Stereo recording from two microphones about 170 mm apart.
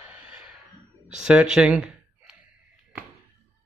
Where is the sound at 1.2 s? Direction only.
5° right (ahead or behind).